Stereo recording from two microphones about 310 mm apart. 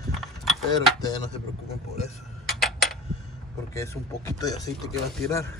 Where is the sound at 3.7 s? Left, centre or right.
Centre.